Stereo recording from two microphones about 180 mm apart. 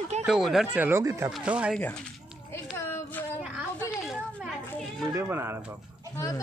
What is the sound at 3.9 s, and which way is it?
Children playing, 5° right (ahead or behind).